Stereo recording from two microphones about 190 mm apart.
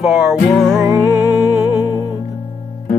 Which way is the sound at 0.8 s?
15° right (ahead or behind).